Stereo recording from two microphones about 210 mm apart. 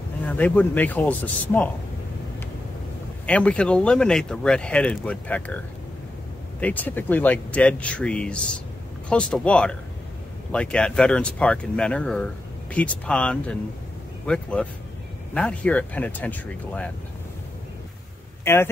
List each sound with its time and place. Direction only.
0.3 s speech: 5° left (ahead or behind)
3.3 s speech: 5° left (ahead or behind)
6.6 s speech: 10° left (ahead or behind)
18.4 s speech: 10° left (ahead or behind)